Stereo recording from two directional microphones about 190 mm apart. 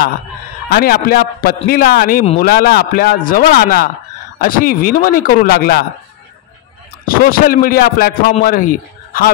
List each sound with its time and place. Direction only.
0.7 s a man's voice: 55° left (ahead or behind)
7.1 s a man's voice: 50° left (ahead or behind)